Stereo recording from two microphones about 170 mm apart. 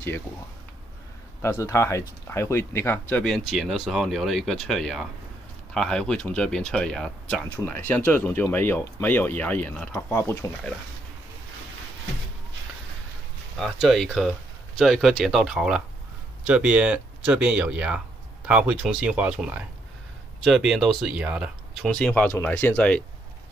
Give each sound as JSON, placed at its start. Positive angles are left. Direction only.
{"t": 1.4, "sound": "speech", "side_deg": 15}
{"t": 13.6, "sound": "speech", "side_deg": 0}
{"t": 21.8, "sound": "speech", "side_deg": 5}